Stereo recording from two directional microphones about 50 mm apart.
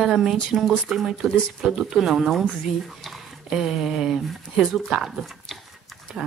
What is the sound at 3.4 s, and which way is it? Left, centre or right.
Speech, centre.